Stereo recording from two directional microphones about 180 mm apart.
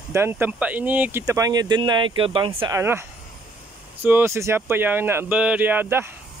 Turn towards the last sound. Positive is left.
turn(degrees=-10)  # may be behind; listen again after turning